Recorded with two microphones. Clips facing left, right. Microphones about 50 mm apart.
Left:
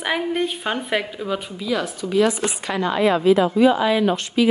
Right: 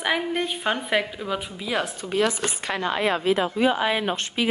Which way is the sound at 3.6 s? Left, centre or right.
Right.